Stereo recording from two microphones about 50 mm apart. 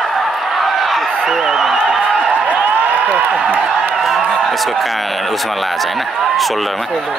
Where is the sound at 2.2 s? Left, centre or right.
Right.